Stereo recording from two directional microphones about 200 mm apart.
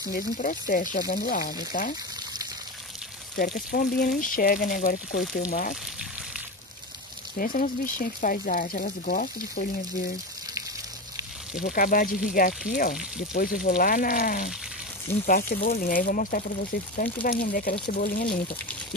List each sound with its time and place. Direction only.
0.0 s speech: 45° left (ahead or behind)
3.3 s speech: 50° left (ahead or behind)
7.3 s speech: 45° left (ahead or behind)
11.6 s speech: 45° left (ahead or behind)